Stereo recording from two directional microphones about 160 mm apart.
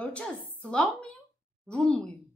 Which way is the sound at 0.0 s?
10° left (ahead or behind).